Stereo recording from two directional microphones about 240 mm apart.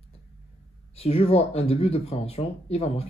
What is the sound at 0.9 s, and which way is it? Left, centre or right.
Speech, left.